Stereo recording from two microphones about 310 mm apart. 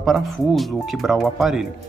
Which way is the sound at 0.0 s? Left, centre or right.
Centre.